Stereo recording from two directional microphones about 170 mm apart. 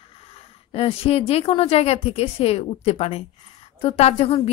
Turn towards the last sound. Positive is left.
turn(degrees=35)  # may be behind; listen again after turning